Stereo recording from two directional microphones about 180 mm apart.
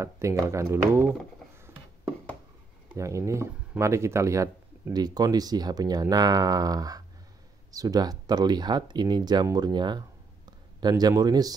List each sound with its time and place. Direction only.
0.0 s speech: 15° right (ahead or behind)
2.9 s speech: 15° right (ahead or behind)